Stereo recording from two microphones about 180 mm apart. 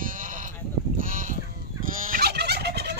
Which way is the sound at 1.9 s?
50° right (ahead or behind).